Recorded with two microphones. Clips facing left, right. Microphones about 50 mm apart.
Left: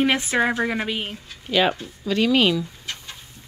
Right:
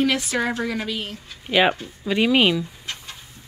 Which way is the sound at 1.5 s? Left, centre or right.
Centre.